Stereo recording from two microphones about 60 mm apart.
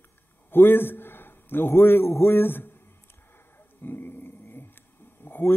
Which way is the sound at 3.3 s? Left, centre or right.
Left.